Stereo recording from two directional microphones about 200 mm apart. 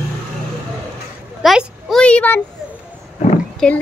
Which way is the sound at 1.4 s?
5° right (ahead or behind).